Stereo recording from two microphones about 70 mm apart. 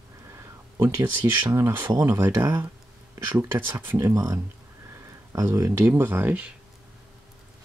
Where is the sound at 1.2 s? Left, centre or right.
Right.